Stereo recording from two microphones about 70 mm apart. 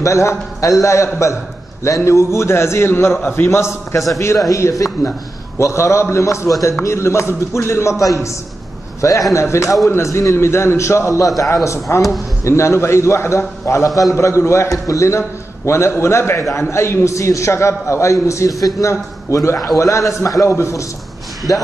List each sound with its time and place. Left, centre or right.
0.0 s a man's voice: left
9.3 s a man's voice: left